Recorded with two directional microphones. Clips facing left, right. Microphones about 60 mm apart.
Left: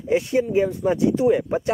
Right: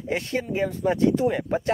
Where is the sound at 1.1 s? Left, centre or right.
Centre.